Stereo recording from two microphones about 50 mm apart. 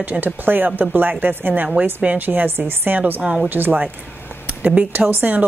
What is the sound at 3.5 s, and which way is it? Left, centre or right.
Speech, right.